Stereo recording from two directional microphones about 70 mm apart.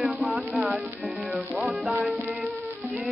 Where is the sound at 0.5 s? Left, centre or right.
Right.